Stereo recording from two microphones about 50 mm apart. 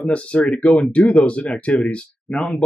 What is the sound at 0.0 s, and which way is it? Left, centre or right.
Speech, left.